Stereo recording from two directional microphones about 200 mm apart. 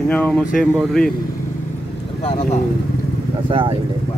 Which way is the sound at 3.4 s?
25° right (ahead or behind).